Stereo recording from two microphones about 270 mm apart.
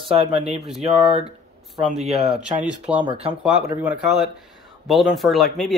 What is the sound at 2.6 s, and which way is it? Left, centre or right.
Speech, centre.